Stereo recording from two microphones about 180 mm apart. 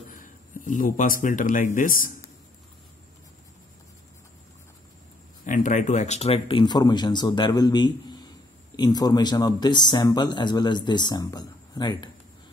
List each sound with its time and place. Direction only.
0.1 s a man's voice: 50° left (ahead or behind)
5.5 s speech: 45° left (ahead or behind); by 12.1 s 25° left (ahead or behind)